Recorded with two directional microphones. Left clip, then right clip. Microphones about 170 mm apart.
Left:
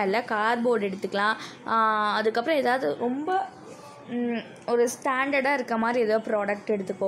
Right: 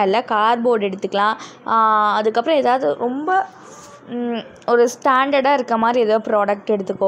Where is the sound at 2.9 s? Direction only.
30° right (ahead or behind).